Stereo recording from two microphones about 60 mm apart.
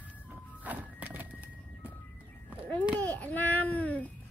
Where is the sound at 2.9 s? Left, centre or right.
Left.